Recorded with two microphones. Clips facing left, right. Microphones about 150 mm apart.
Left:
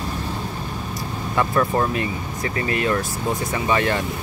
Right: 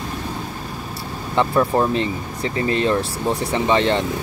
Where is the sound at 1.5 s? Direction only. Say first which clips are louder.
Right 3 dB; 10° right (ahead or behind).